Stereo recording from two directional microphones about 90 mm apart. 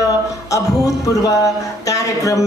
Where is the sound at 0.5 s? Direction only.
35° left (ahead or behind).